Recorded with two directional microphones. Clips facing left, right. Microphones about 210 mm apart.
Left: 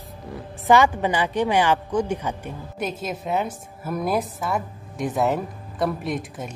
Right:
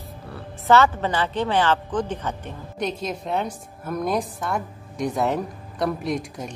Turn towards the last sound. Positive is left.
turn(degrees=0)  # may be behind; listen again after turning